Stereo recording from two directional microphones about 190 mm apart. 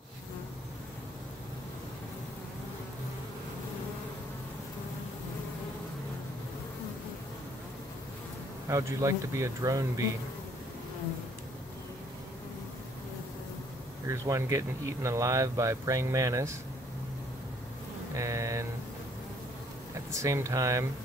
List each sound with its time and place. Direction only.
8.6 s speech: 15° right (ahead or behind)
14.0 s speech: 15° right (ahead or behind)
18.1 s a sound: 15° right (ahead or behind)
19.9 s speech: 15° right (ahead or behind)